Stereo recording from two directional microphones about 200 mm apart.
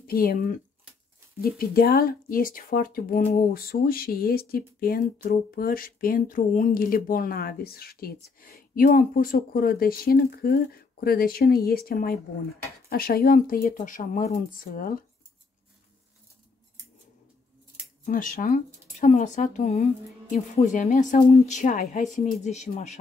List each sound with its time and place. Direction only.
0.0 s speech: 45° left (ahead or behind)
18.0 s speech: 40° left (ahead or behind)